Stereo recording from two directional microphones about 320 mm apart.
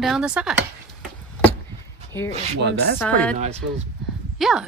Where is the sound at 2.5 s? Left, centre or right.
Right.